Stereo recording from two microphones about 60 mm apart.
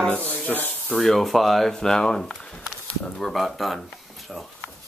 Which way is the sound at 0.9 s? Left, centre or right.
Centre.